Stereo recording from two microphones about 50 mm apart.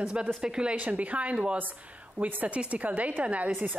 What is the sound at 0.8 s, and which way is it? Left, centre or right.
Speech, right.